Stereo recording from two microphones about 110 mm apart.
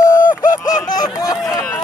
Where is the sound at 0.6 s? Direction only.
35° left (ahead or behind).